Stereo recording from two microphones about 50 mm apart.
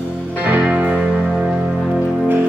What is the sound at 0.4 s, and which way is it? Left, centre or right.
Music, right.